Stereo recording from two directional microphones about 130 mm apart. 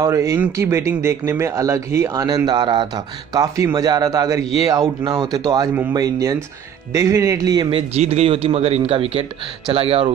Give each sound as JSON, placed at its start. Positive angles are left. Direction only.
{"t": 0.0, "sound": "speech", "side_deg": -25}
{"t": 7.7, "sound": "speech", "side_deg": -50}